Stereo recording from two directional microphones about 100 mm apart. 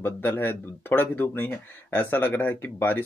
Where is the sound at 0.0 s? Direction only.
20° left (ahead or behind).